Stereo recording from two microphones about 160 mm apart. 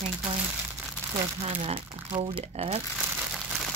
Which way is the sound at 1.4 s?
40° right (ahead or behind).